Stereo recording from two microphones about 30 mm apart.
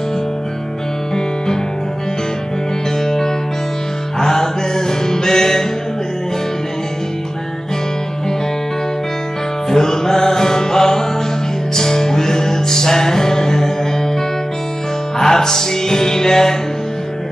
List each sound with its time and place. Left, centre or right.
3.0 s music: centre
9.7 s music: centre
15.1 s music: centre